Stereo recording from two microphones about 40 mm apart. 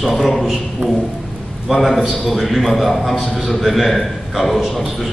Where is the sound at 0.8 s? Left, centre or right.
Right.